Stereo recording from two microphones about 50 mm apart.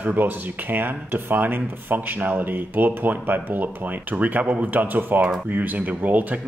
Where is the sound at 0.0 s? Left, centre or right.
Right.